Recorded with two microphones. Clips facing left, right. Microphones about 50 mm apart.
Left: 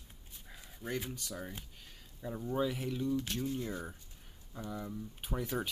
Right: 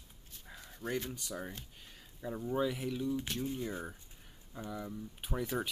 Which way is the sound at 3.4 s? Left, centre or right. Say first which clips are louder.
Even; centre.